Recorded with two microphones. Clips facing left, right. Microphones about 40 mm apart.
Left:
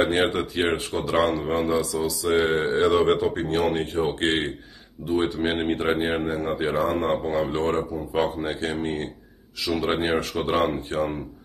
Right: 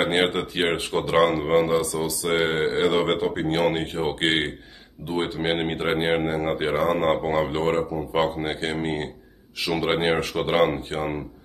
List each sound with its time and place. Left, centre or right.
0.0 s speech: right
7.5 s speech: right